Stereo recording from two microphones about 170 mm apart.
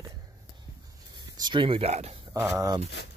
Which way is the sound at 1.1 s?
25° right (ahead or behind).